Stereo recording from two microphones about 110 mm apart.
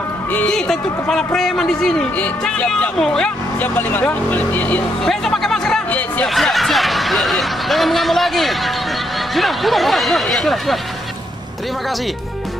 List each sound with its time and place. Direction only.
0.3 s speech: 15° left (ahead or behind)
0.6 s speech: 5° left (ahead or behind)
3.7 s speech: 15° left (ahead or behind)
5.0 s speech: 5° left (ahead or behind)
6.2 s speech: centre (ahead or behind)